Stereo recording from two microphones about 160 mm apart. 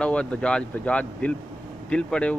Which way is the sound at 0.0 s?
5° left (ahead or behind).